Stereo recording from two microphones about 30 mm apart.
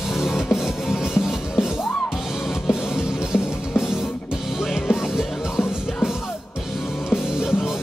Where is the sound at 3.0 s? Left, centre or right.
Centre.